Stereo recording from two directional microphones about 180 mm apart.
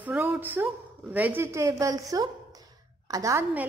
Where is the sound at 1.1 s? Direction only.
10° right (ahead or behind).